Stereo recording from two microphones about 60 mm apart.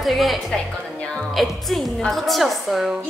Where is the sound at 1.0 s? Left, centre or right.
Centre.